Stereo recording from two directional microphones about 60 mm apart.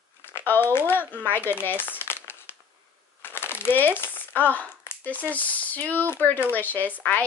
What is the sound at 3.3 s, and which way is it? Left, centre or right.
Crumpling, left.